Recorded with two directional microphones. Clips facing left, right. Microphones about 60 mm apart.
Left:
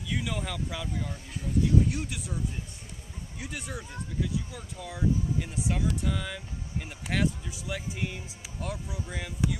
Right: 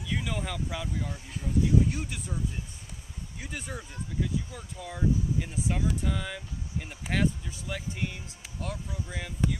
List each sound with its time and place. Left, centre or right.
0.1 s speech: centre